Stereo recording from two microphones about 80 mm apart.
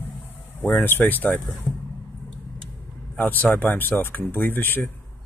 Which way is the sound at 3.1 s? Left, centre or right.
Left.